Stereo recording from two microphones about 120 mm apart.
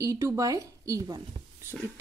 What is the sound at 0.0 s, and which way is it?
A woman's voice, 25° right (ahead or behind).